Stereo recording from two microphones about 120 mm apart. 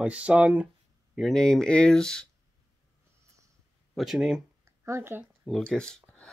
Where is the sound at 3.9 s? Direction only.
5° right (ahead or behind).